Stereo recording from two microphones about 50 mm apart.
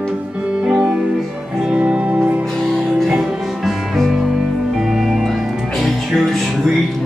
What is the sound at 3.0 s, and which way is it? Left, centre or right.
Music, centre.